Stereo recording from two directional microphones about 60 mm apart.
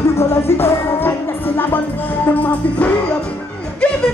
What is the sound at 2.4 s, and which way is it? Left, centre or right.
Music, left.